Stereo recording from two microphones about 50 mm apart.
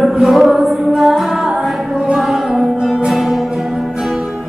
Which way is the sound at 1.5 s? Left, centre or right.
Centre.